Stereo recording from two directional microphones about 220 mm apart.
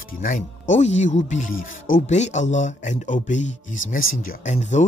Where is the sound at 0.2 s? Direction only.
35° left (ahead or behind).